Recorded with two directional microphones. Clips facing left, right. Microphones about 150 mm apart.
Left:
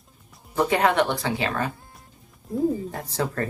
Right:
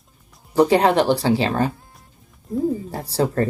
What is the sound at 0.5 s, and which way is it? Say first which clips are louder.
Speech: right 6 dB; 35° right (ahead or behind).